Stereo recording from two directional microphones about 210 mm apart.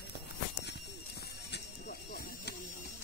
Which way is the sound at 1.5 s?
50° left (ahead or behind).